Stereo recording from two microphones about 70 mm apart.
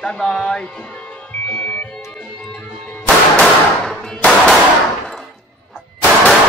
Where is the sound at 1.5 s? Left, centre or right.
Left.